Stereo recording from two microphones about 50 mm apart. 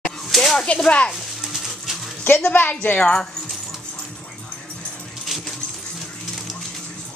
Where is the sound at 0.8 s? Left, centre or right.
Left.